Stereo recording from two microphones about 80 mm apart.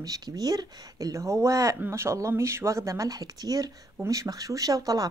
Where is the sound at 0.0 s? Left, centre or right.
Right.